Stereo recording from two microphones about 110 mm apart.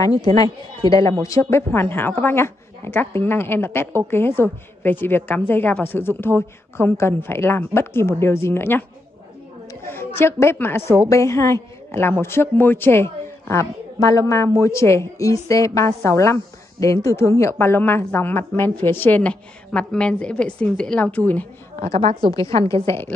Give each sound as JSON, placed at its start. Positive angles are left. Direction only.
{"t": 0.1, "sound": "speech", "side_deg": -55}
{"t": 0.4, "sound": "a woman's voice", "side_deg": 35}
{"t": 9.8, "sound": "a woman's voice", "side_deg": 20}
{"t": 22.2, "sound": "speech", "side_deg": 35}
{"t": 22.9, "sound": "a woman's voice", "side_deg": 25}